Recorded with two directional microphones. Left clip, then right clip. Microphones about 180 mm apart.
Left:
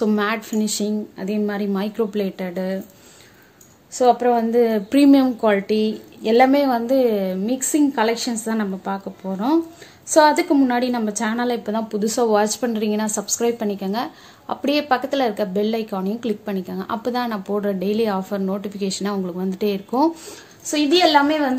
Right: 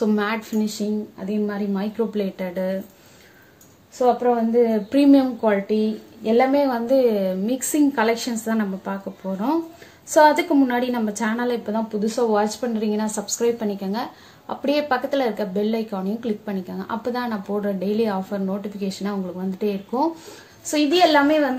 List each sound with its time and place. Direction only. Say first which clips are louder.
0.0 s speech: left 2 dB; 25° left (ahead or behind)
4.0 s a woman's voice: left 3 dB; 45° left (ahead or behind); by 21.5 s 30° left (ahead or behind)